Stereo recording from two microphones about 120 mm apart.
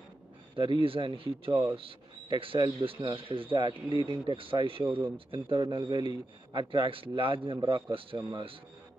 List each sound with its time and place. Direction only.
0.6 s a man's voice: 45° right (ahead or behind)